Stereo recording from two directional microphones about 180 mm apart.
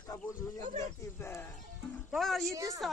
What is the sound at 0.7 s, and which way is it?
Speech, 15° left (ahead or behind).